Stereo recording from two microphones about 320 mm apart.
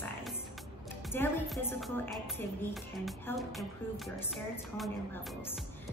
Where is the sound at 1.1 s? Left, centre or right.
Centre.